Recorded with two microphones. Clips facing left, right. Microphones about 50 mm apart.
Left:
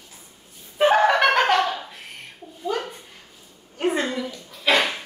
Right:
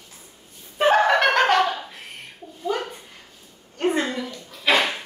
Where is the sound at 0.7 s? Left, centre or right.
Centre.